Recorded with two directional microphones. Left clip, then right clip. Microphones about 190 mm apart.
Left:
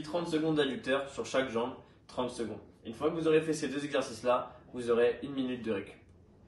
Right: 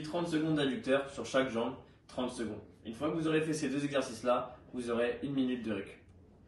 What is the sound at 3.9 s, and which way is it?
Speech, centre (ahead or behind).